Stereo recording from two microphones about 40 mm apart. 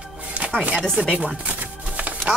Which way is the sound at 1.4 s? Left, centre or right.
Right.